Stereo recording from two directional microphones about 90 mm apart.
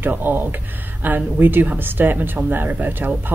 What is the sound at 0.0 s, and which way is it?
Speech, 20° right (ahead or behind).